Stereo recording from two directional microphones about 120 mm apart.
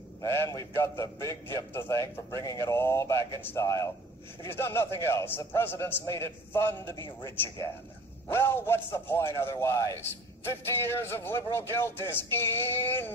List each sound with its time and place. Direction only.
0.2 s a man's voice: 25° left (ahead or behind)
8.3 s a man's voice: 20° left (ahead or behind)